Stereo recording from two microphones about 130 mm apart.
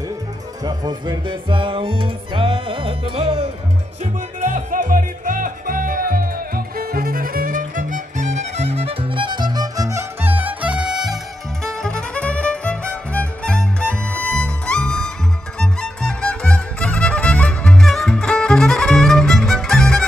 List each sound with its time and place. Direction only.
0.7 s music: 35° right (ahead or behind)
4.0 s music: 70° right (ahead or behind); by 20.1 s 5° left (ahead or behind)